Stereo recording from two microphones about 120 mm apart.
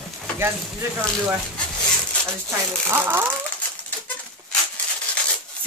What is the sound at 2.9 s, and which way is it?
Speech, 20° right (ahead or behind).